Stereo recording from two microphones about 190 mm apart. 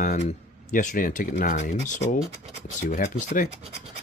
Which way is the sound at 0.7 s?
45° left (ahead or behind).